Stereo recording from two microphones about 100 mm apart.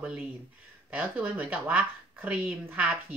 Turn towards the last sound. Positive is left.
turn(degrees=-15)  # may be behind; listen again after turning